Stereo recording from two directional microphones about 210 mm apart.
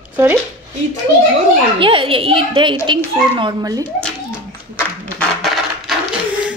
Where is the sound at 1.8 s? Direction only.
25° right (ahead or behind).